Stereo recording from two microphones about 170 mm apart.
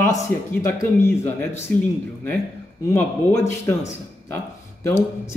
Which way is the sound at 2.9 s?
15° left (ahead or behind).